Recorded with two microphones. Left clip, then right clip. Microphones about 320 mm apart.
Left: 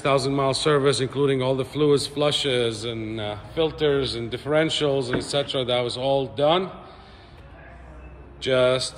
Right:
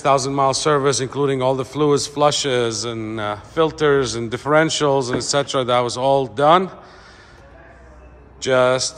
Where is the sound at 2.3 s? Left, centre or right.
Right.